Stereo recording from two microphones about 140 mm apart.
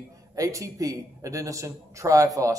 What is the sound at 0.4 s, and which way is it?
A man's voice, 25° right (ahead or behind).